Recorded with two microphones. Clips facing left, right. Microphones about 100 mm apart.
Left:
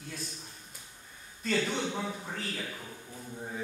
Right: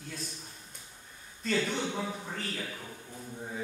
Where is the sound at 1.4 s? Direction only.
Centre (ahead or behind).